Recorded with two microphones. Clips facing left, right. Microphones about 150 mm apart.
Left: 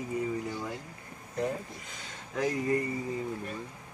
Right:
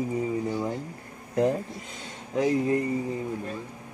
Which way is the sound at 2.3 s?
25° right (ahead or behind).